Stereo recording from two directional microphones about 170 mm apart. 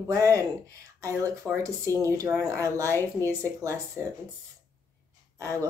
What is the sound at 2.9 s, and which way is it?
Speech, 15° left (ahead or behind).